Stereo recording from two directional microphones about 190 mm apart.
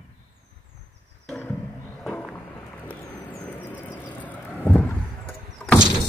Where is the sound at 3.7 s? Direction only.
10° left (ahead or behind).